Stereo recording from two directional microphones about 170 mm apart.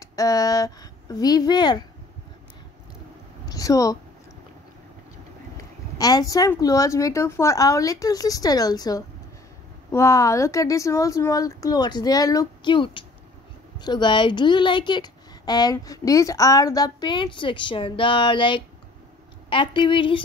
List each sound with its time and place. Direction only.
0.0 s speech: 20° left (ahead or behind)
3.4 s speech: 20° left (ahead or behind)
5.6 s speech: 20° left (ahead or behind)